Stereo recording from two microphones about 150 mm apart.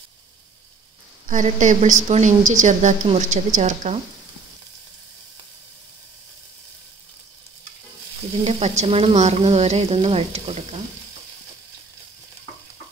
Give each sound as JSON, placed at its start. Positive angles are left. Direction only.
{"t": 1.2, "sound": "a woman's voice", "side_deg": -55}
{"t": 8.5, "sound": "a woman's voice", "side_deg": -45}